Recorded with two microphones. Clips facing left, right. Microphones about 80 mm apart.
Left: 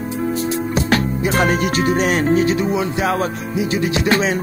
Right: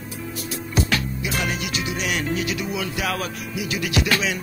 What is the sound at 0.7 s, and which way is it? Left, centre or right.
Music, left.